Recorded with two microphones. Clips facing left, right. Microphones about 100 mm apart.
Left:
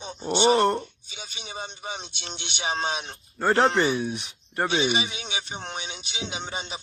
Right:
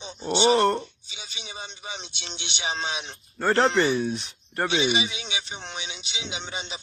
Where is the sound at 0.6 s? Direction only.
15° left (ahead or behind).